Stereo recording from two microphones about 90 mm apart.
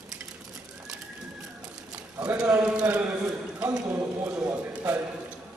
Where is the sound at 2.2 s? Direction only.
15° right (ahead or behind).